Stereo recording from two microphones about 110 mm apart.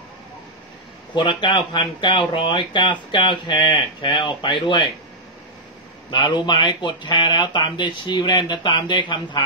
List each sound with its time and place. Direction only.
1.1 s speech: 45° left (ahead or behind)
6.0 s speech: 45° left (ahead or behind)